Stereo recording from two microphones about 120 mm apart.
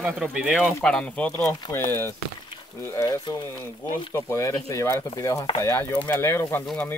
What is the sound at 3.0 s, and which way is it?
Speech, 35° left (ahead or behind).